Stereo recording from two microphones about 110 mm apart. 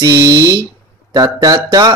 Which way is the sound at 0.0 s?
35° right (ahead or behind).